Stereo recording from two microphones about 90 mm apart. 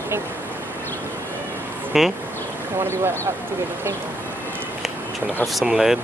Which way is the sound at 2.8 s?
25° right (ahead or behind).